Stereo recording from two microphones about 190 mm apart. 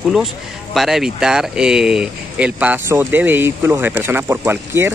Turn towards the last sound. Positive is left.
turn(degrees=-10)  # may be behind; listen again after turning